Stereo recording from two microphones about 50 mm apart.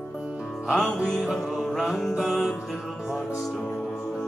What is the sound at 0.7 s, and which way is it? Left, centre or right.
Music, centre.